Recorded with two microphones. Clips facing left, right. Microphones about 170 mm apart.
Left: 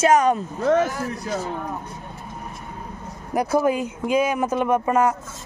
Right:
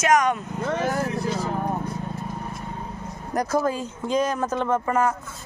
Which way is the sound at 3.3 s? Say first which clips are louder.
Left 3 dB; 15° left (ahead or behind).